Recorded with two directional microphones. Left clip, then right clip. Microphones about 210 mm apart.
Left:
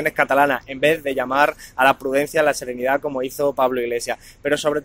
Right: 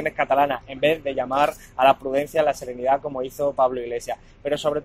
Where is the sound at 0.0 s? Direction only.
40° left (ahead or behind).